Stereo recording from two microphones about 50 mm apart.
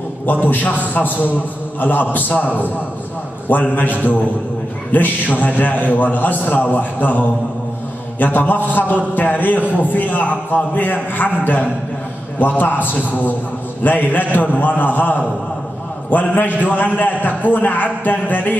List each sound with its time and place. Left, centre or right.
0.3 s a man's voice: left